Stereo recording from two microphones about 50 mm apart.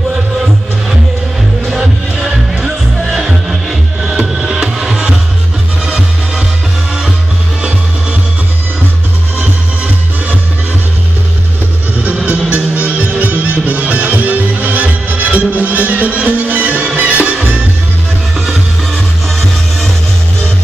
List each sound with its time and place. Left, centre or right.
1.7 s music: centre
12.5 s music: right